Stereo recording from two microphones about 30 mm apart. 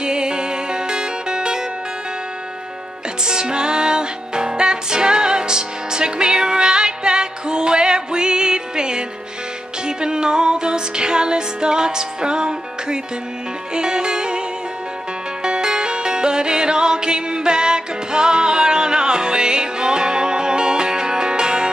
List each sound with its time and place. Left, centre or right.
0.0 s music: right
3.3 s music: right
15.4 s music: right